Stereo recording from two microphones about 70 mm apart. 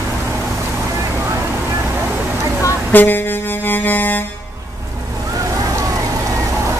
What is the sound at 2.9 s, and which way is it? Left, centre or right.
Vehicle, left.